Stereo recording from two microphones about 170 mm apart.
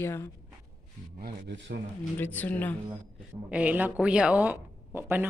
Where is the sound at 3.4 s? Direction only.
10° right (ahead or behind).